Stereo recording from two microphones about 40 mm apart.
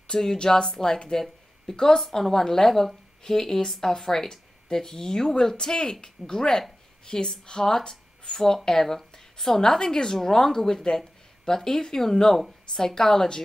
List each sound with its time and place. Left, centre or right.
0.1 s speech: centre